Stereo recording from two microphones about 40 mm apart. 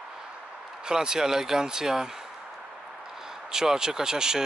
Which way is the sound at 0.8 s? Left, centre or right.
Centre.